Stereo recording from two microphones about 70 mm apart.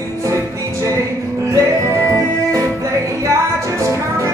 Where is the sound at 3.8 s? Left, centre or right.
Right.